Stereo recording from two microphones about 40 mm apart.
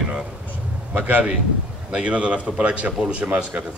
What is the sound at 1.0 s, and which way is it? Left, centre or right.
Speech, right.